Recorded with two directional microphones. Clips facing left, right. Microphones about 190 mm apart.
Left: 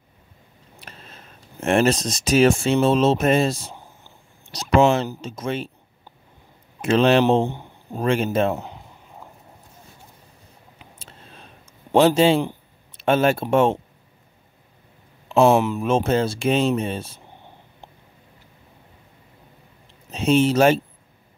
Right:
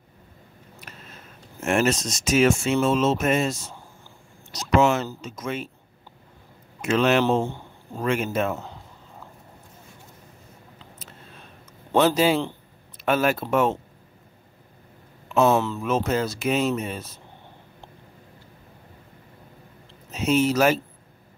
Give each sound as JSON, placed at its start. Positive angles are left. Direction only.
{"t": 1.6, "sound": "speech", "side_deg": 35}
{"t": 3.7, "sound": "a sound", "side_deg": 20}
{"t": 4.5, "sound": "a sound", "side_deg": 30}
{"t": 5.2, "sound": "speech", "side_deg": 30}
{"t": 6.8, "sound": "speech", "side_deg": 30}
{"t": 7.4, "sound": "speech", "side_deg": 20}
{"t": 8.0, "sound": "speech", "side_deg": 30}
{"t": 8.5, "sound": "a sound", "side_deg": 20}
{"t": 12.0, "sound": "speech", "side_deg": 25}
{"t": 15.4, "sound": "speech", "side_deg": 15}
{"t": 15.8, "sound": "speech", "side_deg": 30}
{"t": 20.1, "sound": "speech", "side_deg": 30}